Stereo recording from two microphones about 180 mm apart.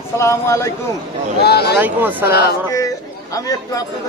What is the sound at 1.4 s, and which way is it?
Speech, 65° left (ahead or behind).